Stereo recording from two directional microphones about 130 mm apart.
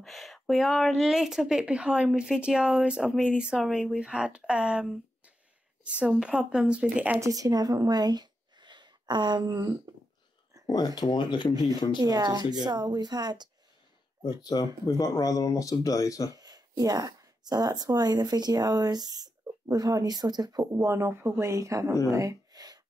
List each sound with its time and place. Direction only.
0.0 s speech: centre (ahead or behind)
7.2 s speech: 25° right (ahead or behind)
10.7 s speech: 30° left (ahead or behind)
12.0 s speech: 30° right (ahead or behind)
14.4 s speech: 30° left (ahead or behind)
16.3 s speech: 30° right (ahead or behind)
22.1 s a sound: 25° right (ahead or behind)